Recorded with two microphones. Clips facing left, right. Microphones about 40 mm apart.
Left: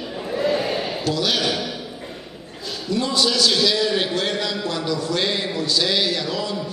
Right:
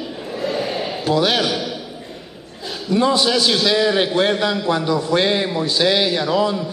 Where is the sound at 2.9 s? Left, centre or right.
Centre.